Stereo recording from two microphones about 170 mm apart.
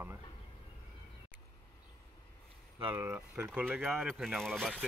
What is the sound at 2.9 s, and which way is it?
Speech, 15° right (ahead or behind).